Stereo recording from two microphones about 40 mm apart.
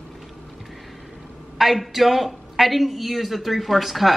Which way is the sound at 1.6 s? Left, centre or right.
Centre.